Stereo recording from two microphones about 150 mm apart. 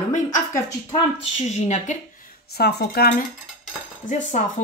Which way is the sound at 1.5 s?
50° left (ahead or behind).